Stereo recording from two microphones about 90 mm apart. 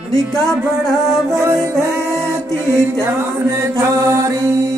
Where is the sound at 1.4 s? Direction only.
35° right (ahead or behind).